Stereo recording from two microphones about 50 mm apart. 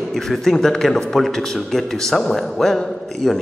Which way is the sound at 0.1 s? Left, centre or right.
Centre.